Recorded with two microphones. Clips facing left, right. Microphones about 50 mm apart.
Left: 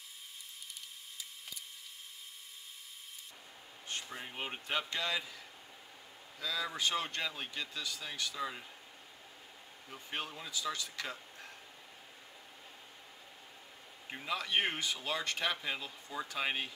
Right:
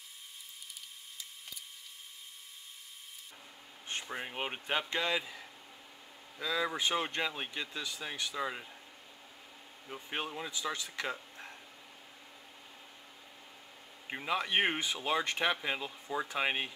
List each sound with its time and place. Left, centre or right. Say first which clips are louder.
3.8 s speech: right 4 dB; right
9.9 s speech: right 3 dB; right
14.0 s speech: right 4 dB; right